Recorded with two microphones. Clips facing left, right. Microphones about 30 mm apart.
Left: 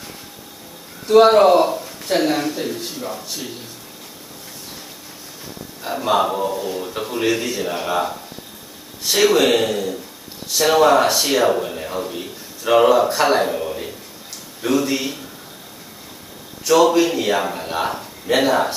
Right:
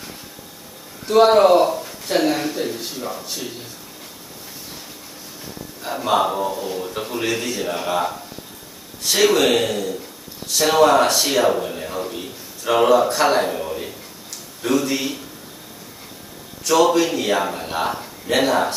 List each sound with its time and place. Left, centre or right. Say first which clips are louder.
1.0 s speech: left 2 dB; centre
5.8 s speech: left 1 dB; centre
16.6 s a man's voice: left 2 dB; centre